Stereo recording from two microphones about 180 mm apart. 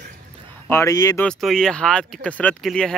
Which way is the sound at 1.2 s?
5° left (ahead or behind).